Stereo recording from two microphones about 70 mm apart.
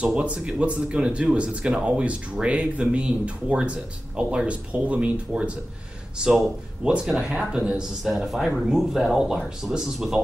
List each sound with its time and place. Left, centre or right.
0.0 s speech: centre
6.8 s speech: centre